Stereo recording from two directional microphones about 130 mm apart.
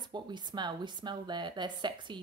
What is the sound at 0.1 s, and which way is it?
A woman's voice, 35° right (ahead or behind).